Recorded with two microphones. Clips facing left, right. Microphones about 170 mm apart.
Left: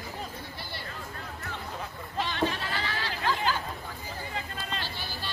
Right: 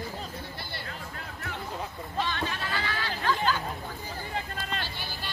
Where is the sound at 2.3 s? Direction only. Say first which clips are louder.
Left 3 dB; 30° left (ahead or behind).